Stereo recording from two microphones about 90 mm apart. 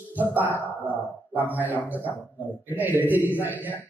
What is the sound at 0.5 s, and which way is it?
Speech, 20° left (ahead or behind).